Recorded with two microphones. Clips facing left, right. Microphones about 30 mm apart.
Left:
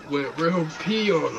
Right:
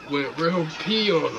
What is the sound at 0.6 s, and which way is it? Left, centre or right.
Speech, right.